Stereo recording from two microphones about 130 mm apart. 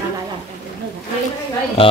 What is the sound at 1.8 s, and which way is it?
Speech, 45° left (ahead or behind).